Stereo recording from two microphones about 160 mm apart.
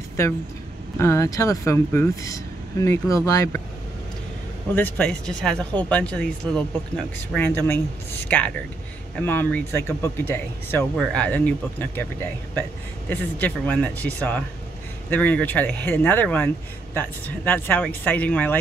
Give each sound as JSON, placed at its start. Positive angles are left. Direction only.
{"t": 0.2, "sound": "speech", "side_deg": 15}
{"t": 4.7, "sound": "speech", "side_deg": 10}
{"t": 13.1, "sound": "speech", "side_deg": 10}